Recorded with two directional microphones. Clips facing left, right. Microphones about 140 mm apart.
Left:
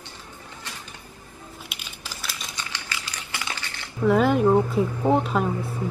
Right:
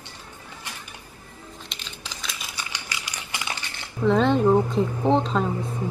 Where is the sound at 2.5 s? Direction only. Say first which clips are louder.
Even; 15° right (ahead or behind).